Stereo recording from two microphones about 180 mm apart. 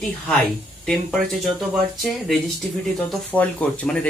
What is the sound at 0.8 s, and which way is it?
Speech, 5° left (ahead or behind).